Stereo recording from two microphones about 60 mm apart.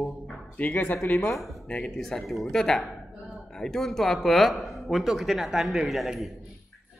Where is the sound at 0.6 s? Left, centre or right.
Left.